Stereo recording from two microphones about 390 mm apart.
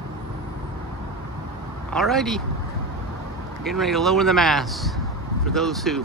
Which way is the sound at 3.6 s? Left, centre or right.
Centre.